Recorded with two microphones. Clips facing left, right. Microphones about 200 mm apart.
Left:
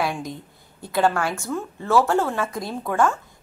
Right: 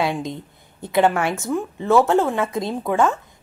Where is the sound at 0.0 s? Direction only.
20° right (ahead or behind).